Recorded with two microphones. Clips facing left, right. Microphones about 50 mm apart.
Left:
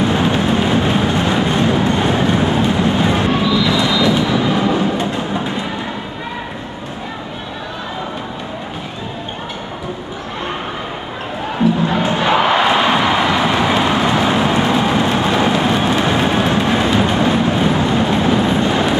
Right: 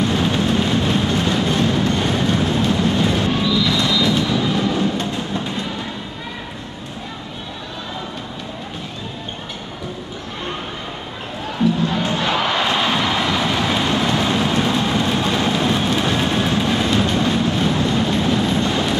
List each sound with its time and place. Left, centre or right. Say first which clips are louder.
0.0 s vehicle: left 3 dB; centre
11.5 s crowd: left 3 dB; centre